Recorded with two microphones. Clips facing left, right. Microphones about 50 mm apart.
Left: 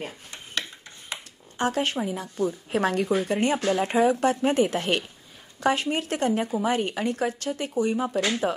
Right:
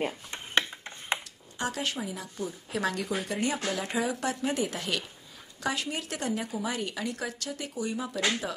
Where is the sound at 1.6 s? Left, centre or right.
Left.